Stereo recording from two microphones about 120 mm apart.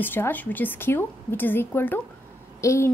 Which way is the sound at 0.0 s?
15° left (ahead or behind).